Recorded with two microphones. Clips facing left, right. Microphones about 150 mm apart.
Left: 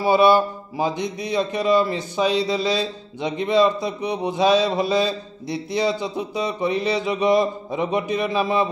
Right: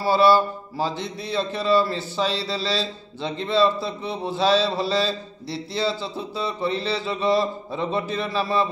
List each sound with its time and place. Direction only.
0.0 s mantra: 15° left (ahead or behind)